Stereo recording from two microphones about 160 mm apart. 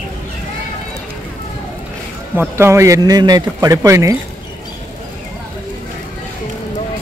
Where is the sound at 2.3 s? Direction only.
15° right (ahead or behind).